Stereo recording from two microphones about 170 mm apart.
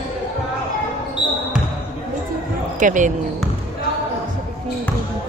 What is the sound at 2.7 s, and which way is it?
Speech, 50° right (ahead or behind).